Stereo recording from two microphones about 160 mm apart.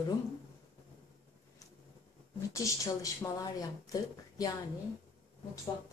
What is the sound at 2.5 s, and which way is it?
A woman's voice, 20° left (ahead or behind).